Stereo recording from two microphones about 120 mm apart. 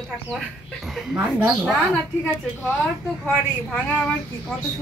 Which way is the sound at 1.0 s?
10° right (ahead or behind).